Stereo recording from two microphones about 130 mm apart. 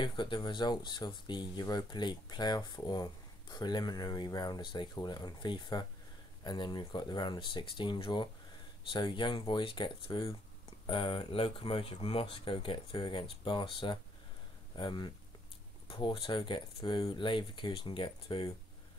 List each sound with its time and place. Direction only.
0.0 s speech: 35° left (ahead or behind)